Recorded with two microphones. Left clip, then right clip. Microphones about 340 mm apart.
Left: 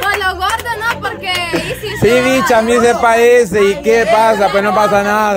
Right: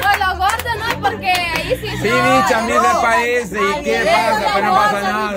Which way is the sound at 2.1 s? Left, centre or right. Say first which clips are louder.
Left 3 dB; centre.